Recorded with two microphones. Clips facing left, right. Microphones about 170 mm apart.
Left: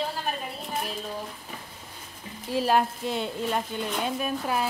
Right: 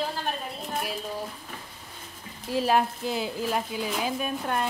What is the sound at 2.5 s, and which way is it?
A woman's voice, centre (ahead or behind).